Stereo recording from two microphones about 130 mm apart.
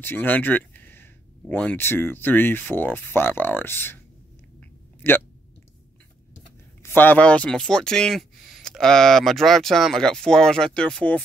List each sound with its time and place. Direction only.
0.0 s speech: 15° left (ahead or behind)
5.0 s speech: 15° left (ahead or behind)
6.8 s speech: 15° left (ahead or behind)